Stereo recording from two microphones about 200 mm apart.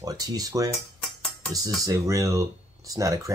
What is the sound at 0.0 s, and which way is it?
Speech, 20° right (ahead or behind).